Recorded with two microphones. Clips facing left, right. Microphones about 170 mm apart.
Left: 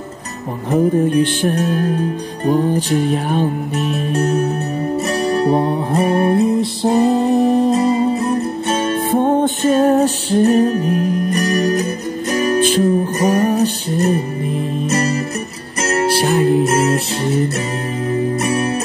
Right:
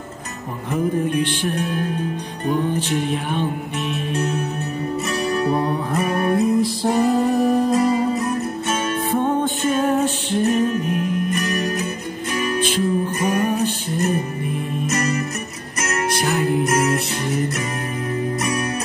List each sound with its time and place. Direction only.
0.7 s music: 40° left (ahead or behind)